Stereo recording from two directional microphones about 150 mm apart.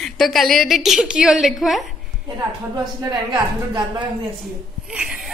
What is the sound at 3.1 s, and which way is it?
Speech, 30° right (ahead or behind).